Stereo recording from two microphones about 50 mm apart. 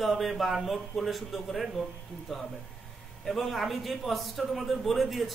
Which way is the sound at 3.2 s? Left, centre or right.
Centre.